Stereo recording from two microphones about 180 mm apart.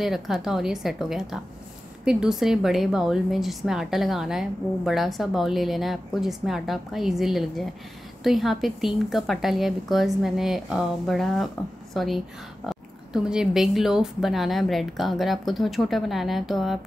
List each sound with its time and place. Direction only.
0.0 s a woman's voice: centre (ahead or behind)